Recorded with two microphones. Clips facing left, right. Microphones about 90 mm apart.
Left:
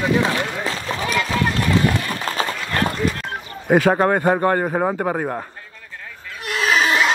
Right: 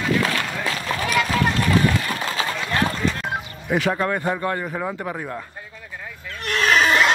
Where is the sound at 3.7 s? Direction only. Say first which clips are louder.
Left 6 dB; 45° left (ahead or behind).